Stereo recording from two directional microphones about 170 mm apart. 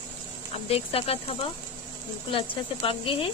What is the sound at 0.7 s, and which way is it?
Speech, 35° left (ahead or behind).